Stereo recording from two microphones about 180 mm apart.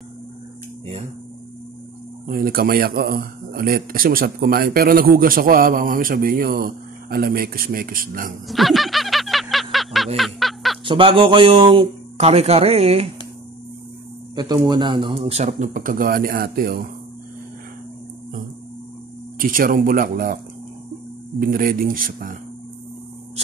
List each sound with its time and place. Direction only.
2.2 s a man's voice: 50° right (ahead or behind)
8.5 s music: centre (ahead or behind)
10.1 s snicker: centre (ahead or behind)
10.9 s speech: 30° right (ahead or behind)
14.3 s speech: 25° right (ahead or behind); by 16.8 s 55° right (ahead or behind)
19.3 s a man's voice: 50° right (ahead or behind)
21.4 s a man's voice: 50° right (ahead or behind)